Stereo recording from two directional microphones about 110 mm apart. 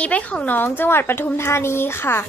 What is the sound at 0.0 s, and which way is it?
A woman's voice, 10° left (ahead or behind).